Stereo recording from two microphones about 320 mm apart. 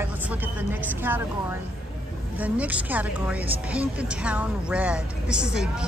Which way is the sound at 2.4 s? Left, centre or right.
Centre.